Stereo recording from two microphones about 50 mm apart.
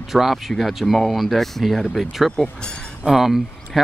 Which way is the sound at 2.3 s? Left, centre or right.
Centre.